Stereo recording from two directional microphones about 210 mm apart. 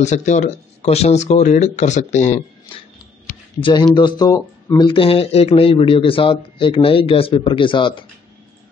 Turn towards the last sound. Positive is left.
turn(degrees=25)  # may be behind; listen again after turning